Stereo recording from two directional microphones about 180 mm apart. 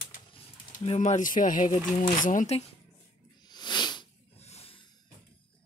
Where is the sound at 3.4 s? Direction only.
25° left (ahead or behind).